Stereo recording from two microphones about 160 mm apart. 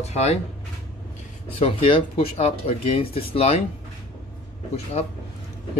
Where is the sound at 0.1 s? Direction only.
40° left (ahead or behind).